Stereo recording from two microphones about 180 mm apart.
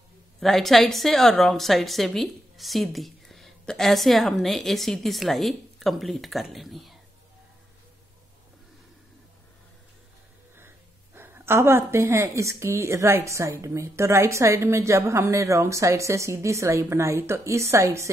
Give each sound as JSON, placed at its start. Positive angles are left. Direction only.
{"t": 0.4, "sound": "a woman's voice", "side_deg": 0}
{"t": 11.1, "sound": "a woman's voice", "side_deg": -15}